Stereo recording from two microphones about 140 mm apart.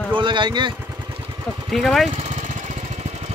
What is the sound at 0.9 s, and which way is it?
Vehicle, 35° right (ahead or behind).